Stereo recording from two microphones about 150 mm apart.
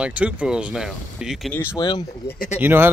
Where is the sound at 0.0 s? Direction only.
10° right (ahead or behind).